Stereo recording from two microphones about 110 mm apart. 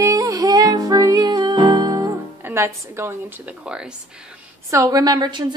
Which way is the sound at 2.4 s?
25° right (ahead or behind).